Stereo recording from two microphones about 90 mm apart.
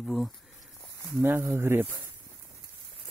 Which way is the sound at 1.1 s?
25° right (ahead or behind).